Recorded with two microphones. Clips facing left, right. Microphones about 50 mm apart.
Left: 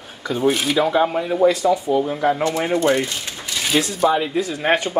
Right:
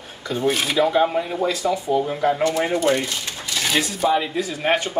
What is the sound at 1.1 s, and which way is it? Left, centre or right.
Speech, centre.